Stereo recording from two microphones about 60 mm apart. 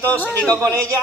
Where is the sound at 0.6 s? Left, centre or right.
Right.